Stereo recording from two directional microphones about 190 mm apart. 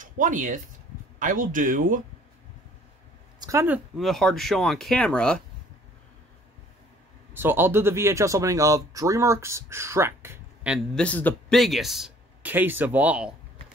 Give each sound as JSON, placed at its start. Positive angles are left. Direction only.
{"t": 0.0, "sound": "speech", "side_deg": -40}
{"t": 3.3, "sound": "speech", "side_deg": -15}
{"t": 7.3, "sound": "speech", "side_deg": -10}
{"t": 11.0, "sound": "speech", "side_deg": 10}